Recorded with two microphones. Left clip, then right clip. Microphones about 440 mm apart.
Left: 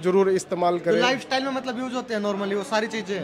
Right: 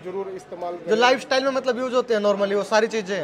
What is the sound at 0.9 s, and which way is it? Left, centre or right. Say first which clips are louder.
A man's voice: right 3 dB; centre.